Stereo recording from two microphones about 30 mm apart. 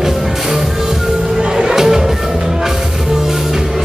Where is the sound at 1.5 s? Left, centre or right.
Centre.